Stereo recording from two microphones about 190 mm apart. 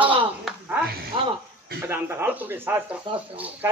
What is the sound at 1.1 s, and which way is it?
Speech, 25° right (ahead or behind).